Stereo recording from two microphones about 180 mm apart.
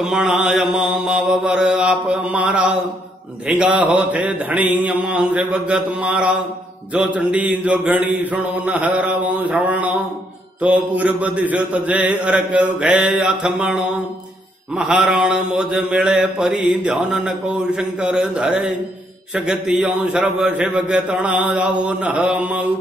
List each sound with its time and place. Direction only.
0.0 s mantra: 5° right (ahead or behind)
14.8 s mantra: centre (ahead or behind)